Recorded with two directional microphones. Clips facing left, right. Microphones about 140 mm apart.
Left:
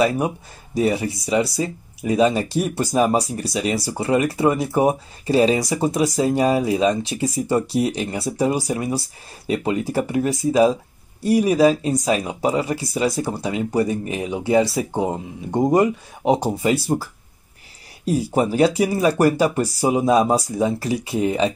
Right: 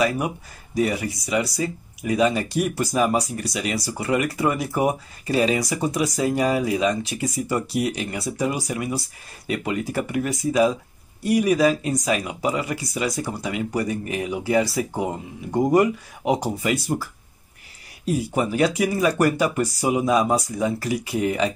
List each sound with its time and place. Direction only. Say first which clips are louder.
0.7 s speech: left 3 dB; 30° left (ahead or behind)